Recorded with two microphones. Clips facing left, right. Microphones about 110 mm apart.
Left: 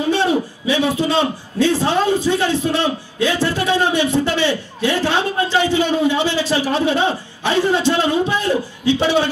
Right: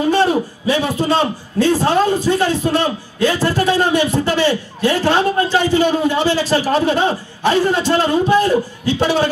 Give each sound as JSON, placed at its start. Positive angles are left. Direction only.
{"t": 0.1, "sound": "a man's voice", "side_deg": -45}